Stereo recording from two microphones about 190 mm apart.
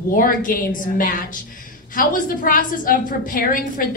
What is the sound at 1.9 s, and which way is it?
A woman's voice, 45° left (ahead or behind).